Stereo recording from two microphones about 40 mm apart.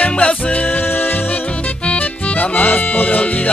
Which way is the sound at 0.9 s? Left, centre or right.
Left.